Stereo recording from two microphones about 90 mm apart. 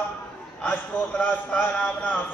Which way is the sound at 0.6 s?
20° left (ahead or behind).